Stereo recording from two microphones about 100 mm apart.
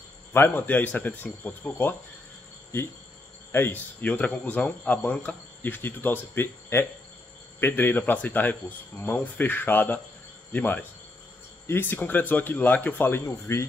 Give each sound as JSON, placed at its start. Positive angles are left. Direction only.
{"t": 0.3, "sound": "speech", "side_deg": 20}
{"t": 3.5, "sound": "speech", "side_deg": 20}